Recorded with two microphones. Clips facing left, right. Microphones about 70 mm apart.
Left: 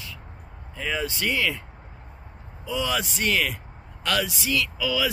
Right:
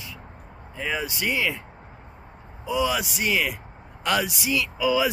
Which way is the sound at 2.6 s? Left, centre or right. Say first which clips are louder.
Right 3 dB; centre.